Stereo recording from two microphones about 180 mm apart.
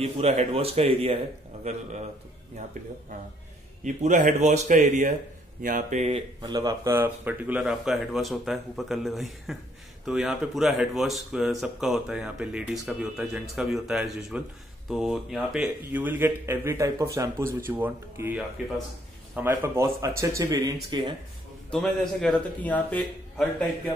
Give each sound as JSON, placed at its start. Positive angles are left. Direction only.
{"t": 0.0, "sound": "speech", "side_deg": -35}
{"t": 3.8, "sound": "speech", "side_deg": -40}
{"t": 6.4, "sound": "speech", "side_deg": -20}
{"t": 21.6, "sound": "speech", "side_deg": 5}